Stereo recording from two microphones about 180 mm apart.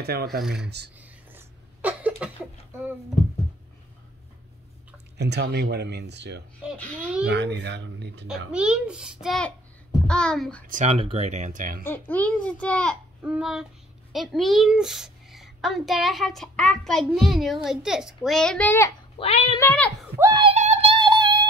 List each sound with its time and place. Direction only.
0.0 s speech: 60° right (ahead or behind)
0.4 s a woman's voice: 5° right (ahead or behind)
0.7 s speech: 65° right (ahead or behind)
1.3 s a sound: 10° right (ahead or behind)
5.1 s speech: 70° right (ahead or behind)
8.5 s a woman's voice: 5° right (ahead or behind)
10.7 s speech: 35° right (ahead or behind)
11.8 s a child's voice: 10° left (ahead or behind)
13.2 s a woman's voice: 5° right (ahead or behind)
19.1 s speech: 35° left (ahead or behind)
19.6 s a child's voice: 5° left (ahead or behind)
20.2 s a sound: 20° right (ahead or behind)
20.4 s a sound: 35° right (ahead or behind)